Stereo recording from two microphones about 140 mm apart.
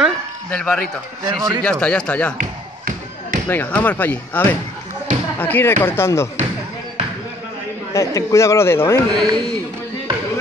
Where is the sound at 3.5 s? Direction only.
15° left (ahead or behind).